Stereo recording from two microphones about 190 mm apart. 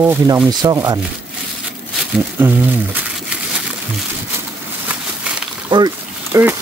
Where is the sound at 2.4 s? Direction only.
10° right (ahead or behind).